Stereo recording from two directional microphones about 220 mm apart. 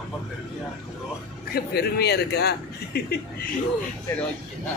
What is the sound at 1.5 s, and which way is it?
A man's voice, 45° left (ahead or behind).